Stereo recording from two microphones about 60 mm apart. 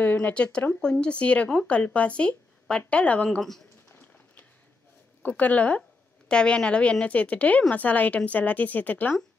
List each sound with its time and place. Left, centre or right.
0.0 s speech: left
3.3 s speech: centre
3.9 s a sound: left
5.2 s speech: left
5.8 s a woman's voice: centre